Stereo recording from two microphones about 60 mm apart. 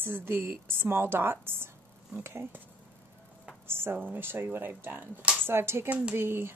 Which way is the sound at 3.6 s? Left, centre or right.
Right.